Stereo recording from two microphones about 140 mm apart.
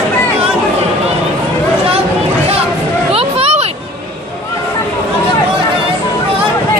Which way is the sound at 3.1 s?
45° right (ahead or behind).